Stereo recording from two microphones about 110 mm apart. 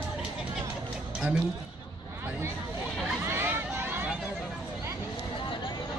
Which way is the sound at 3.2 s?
20° right (ahead or behind).